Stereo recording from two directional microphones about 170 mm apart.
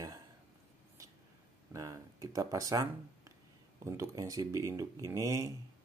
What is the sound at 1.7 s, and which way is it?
Speech, 20° right (ahead or behind).